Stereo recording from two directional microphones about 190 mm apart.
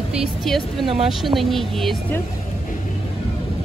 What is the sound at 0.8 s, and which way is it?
Speech, 30° right (ahead or behind).